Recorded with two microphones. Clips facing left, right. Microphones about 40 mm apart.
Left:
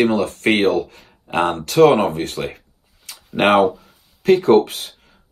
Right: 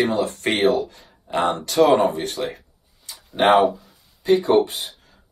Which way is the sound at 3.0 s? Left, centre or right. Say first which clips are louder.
Left 1 dB; left.